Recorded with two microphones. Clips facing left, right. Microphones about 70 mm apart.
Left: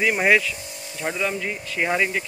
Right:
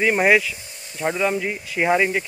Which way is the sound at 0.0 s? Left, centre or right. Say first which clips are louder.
Right 2 dB; centre.